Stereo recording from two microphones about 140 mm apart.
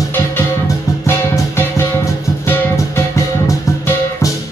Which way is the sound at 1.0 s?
15° left (ahead or behind).